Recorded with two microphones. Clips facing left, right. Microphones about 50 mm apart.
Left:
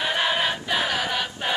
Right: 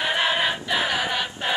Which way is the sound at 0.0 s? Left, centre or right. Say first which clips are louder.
Right 1 dB; centre.